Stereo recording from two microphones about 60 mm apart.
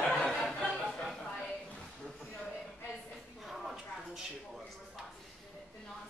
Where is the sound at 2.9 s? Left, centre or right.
Centre.